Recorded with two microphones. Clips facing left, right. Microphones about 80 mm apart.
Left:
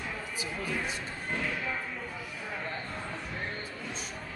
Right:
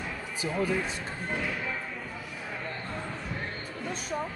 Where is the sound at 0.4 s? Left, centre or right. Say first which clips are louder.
Right 7 dB; right.